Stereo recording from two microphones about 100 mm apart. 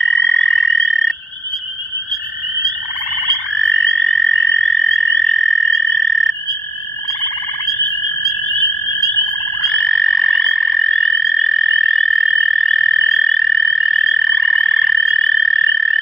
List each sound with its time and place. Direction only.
0.0 s frog: centre (ahead or behind)
3.5 s frog: centre (ahead or behind)
9.6 s frog: centre (ahead or behind)